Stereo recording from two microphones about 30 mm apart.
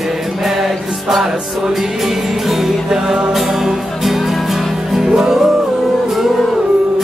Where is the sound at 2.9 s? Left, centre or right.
Right.